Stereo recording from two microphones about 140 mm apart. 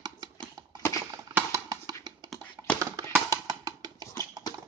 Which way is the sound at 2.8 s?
25° right (ahead or behind).